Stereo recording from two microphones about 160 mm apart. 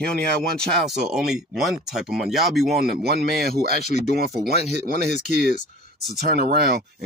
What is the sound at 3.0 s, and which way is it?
Speech, 80° right.